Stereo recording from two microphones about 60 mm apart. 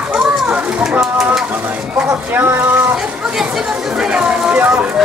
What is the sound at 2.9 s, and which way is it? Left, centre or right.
Chatter, centre.